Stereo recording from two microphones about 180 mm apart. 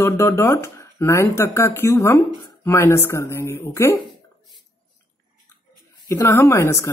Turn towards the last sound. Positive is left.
turn(degrees=15)  # may be behind; listen again after turning